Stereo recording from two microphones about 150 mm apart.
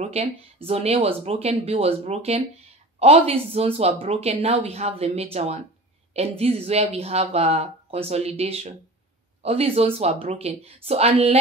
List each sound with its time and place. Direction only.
0.0 s a woman's voice: 45° right (ahead or behind)